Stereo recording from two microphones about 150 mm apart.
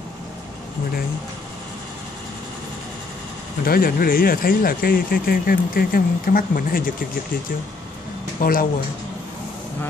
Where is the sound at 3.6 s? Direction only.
80° left.